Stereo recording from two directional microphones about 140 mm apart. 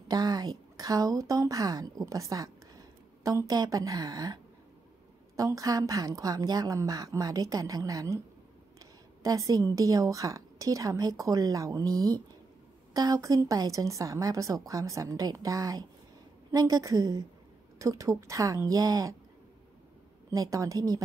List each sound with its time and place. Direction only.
0.1 s a woman's voice: 30° right (ahead or behind)
9.2 s a woman's voice: 25° right (ahead or behind)
20.2 s a woman's voice: 25° right (ahead or behind)